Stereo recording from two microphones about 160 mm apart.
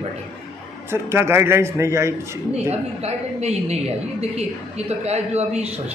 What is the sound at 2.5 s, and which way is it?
A woman's voice, 40° right (ahead or behind).